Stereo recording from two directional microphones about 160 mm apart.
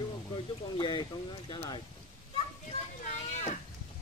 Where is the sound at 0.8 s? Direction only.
30° left (ahead or behind).